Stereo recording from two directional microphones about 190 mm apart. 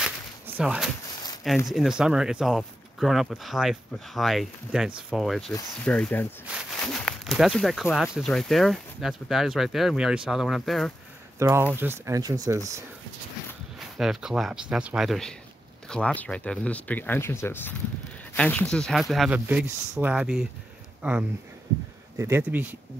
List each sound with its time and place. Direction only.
0.6 s speech: 5° right (ahead or behind)
11.3 s speech: 15° right (ahead or behind)
13.7 s speech: centre (ahead or behind)